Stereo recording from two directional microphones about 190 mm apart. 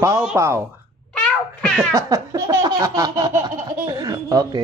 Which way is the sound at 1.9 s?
20° right (ahead or behind).